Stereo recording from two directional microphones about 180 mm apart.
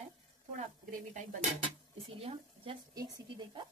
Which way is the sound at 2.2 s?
30° right (ahead or behind).